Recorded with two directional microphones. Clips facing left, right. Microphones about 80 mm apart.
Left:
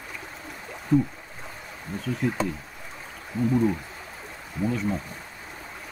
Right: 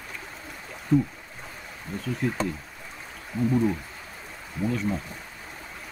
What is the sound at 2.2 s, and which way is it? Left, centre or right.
Speech, centre.